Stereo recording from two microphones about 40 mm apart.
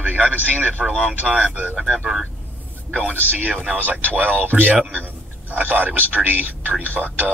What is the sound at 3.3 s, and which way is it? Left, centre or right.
Speech, right.